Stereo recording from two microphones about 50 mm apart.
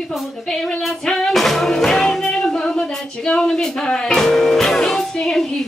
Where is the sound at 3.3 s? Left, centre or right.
Centre.